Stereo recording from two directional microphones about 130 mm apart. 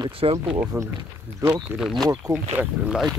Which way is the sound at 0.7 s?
15° right (ahead or behind).